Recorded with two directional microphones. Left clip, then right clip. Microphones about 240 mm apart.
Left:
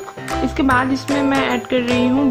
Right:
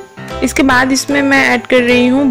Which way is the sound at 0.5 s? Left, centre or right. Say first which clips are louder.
Right 7 dB; right.